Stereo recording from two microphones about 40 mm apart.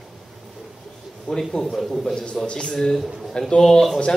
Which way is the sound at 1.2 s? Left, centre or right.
Centre.